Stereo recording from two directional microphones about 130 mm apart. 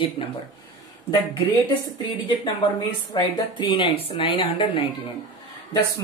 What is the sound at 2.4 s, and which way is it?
Speech, 35° left (ahead or behind).